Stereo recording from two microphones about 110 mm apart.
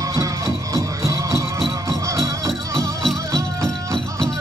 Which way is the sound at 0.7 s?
30° right (ahead or behind).